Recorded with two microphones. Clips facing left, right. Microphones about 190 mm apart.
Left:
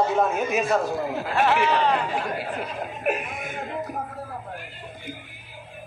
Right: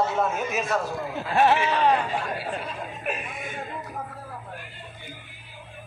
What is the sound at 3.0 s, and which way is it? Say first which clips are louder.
Speech: left 7 dB; 65° left (ahead or behind).